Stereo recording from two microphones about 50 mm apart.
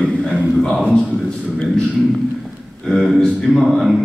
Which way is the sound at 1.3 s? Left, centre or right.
Centre.